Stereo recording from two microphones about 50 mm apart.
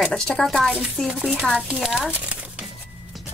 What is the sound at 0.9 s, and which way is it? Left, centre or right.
Speech, centre.